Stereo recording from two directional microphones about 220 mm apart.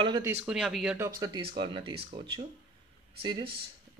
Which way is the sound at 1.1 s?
15° right (ahead or behind).